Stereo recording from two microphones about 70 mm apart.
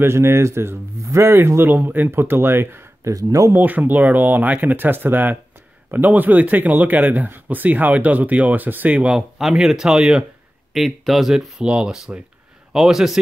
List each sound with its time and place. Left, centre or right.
0.0 s speech: right
3.1 s speech: right
3.5 s a man's voice: right
9.4 s speech: centre